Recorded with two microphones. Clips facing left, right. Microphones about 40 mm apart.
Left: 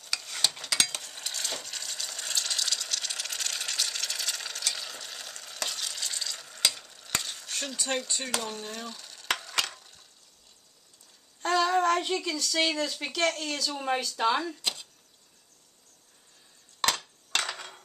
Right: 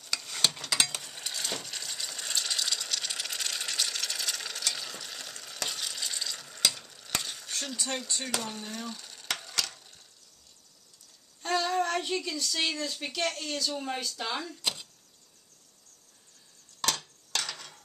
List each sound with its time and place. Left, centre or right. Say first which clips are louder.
0.0 s a sound: left 1 dB; centre
0.5 s mechanisms: even; centre
0.7 s ratchet: even; centre
8.2 s speech: left 1 dB; centre
11.4 s child singing: left 4 dB; left
12.4 s speech: left 6 dB; left
13.3 s speech: left 2 dB; left
14.6 s a sound: even; centre
16.8 s a sound: left 3 dB; left